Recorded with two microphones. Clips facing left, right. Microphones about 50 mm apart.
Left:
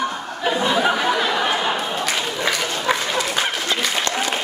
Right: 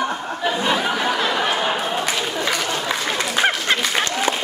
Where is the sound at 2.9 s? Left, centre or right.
Centre.